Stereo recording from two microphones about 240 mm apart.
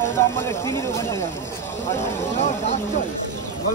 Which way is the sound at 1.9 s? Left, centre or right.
Left.